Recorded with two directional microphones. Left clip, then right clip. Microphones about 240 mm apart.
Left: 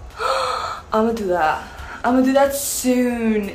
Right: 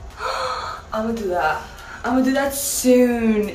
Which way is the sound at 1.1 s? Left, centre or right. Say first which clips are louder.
Left 2 dB; centre.